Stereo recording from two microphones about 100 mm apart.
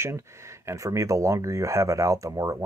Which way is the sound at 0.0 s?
30° right (ahead or behind).